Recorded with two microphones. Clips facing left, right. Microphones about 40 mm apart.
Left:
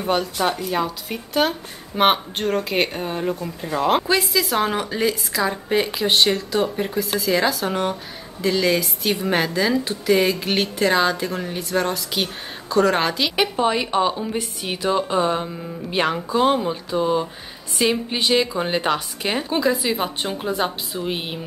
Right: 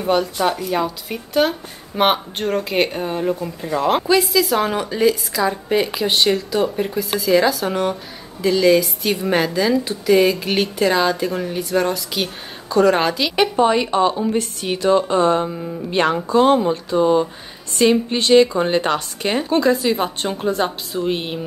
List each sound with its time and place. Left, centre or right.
0.0 s a woman's voice: centre